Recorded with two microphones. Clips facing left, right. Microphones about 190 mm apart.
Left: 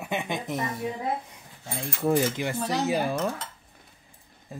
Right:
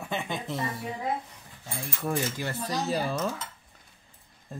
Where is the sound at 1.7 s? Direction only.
20° left (ahead or behind).